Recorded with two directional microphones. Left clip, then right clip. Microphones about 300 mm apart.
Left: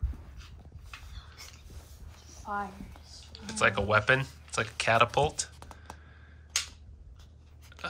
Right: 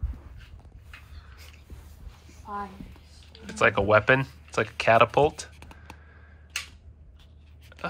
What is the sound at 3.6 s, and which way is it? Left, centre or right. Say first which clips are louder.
Speech: right 5 dB; centre.